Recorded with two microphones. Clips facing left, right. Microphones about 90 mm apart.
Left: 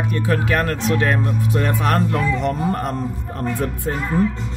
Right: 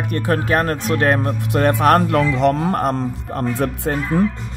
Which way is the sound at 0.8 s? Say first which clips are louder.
Right 2 dB; 50° right (ahead or behind).